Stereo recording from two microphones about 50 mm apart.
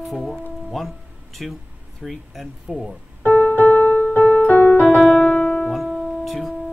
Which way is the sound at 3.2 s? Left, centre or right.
Left.